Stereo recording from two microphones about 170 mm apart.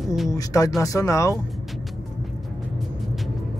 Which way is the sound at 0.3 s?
20° left (ahead or behind).